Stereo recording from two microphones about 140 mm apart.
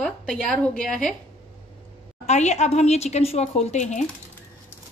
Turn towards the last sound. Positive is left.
turn(degrees=55)  # may be behind; listen again after turning